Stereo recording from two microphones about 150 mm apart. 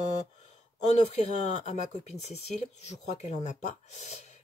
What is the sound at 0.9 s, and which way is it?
Speech, 50° left (ahead or behind).